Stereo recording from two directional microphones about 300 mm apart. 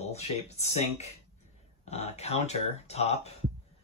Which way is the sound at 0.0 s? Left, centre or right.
Left.